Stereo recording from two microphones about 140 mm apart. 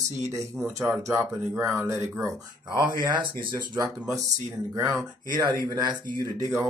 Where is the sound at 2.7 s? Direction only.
30° right (ahead or behind).